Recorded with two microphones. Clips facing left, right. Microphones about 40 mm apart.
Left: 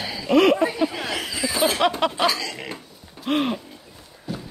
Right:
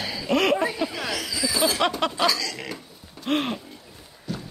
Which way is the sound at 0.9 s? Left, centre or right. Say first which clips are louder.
Left 1 dB; centre.